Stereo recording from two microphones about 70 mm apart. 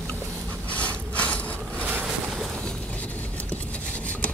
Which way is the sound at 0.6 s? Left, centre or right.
Centre.